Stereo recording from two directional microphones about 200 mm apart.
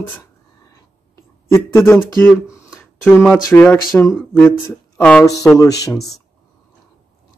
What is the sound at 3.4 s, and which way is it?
Speech, 10° left (ahead or behind).